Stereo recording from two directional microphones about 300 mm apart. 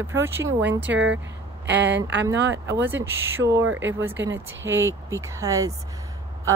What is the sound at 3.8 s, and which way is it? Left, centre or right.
Speech, right.